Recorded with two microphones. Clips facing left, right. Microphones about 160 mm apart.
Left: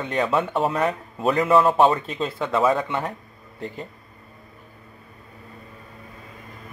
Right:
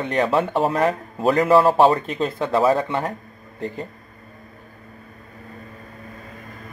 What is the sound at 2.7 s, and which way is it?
A man's voice, 40° right (ahead or behind).